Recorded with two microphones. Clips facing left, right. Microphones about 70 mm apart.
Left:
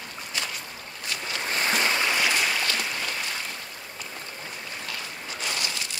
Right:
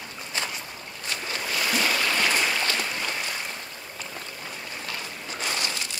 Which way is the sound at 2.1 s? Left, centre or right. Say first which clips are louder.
Even; centre.